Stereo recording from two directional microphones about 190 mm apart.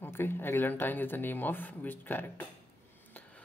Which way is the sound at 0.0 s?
10° left (ahead or behind).